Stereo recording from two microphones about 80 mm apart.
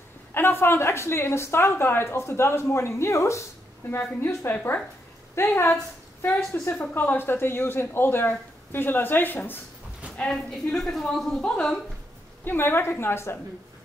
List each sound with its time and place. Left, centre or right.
0.3 s a woman's voice: left
10.1 s a woman's voice: centre
12.4 s speech: left